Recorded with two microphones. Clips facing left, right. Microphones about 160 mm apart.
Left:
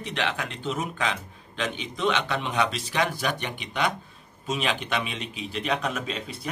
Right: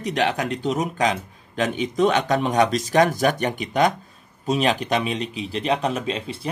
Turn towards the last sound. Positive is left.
turn(degrees=-30)  # may be behind; listen again after turning